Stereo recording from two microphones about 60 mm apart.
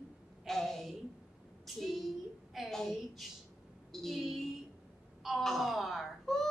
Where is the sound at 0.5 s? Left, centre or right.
Centre.